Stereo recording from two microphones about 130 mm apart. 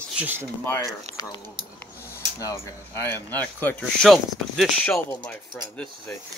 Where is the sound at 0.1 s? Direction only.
15° right (ahead or behind).